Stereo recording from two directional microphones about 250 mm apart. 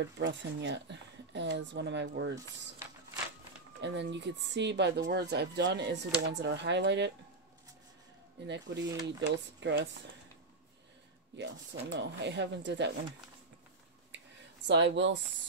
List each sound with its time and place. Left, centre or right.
0.0 s a woman's voice: right
3.8 s a woman's voice: right
8.5 s a woman's voice: right
11.3 s a woman's voice: right
14.7 s a woman's voice: right